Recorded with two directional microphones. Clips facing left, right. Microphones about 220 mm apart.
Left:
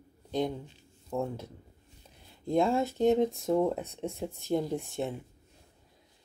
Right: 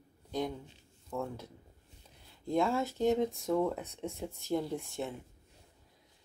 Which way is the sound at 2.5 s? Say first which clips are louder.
Left 4 dB; 25° left (ahead or behind).